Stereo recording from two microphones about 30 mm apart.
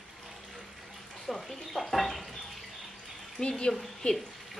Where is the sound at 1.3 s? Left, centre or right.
Centre.